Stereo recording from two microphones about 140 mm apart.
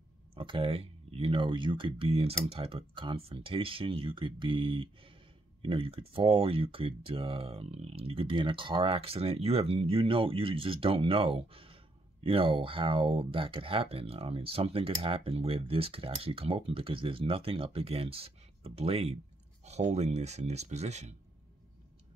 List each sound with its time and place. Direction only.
0.4 s speech: 40° right (ahead or behind)